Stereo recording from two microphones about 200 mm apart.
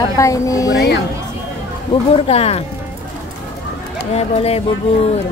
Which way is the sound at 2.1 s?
30° left (ahead or behind).